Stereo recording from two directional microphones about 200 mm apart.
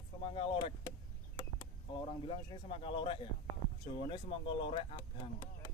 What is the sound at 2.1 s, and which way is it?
Speech, 25° left (ahead or behind).